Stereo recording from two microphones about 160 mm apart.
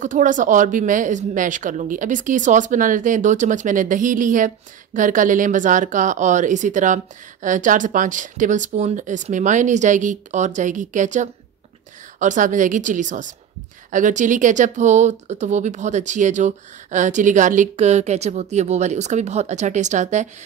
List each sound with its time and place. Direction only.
0.0 s speech: 55° right (ahead or behind)